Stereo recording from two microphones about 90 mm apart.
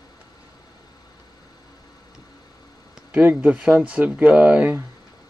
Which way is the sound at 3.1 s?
15° right (ahead or behind).